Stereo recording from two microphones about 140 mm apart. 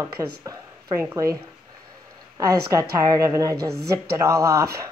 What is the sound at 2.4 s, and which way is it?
Speech, 25° right (ahead or behind).